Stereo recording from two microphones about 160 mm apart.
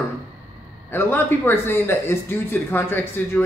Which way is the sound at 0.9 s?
15° left (ahead or behind).